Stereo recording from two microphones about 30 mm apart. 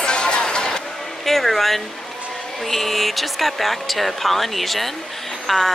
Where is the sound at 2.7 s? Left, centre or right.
Centre.